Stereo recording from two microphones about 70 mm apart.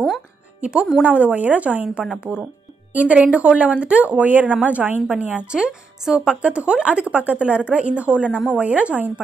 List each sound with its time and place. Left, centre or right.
0.6 s a woman's voice: centre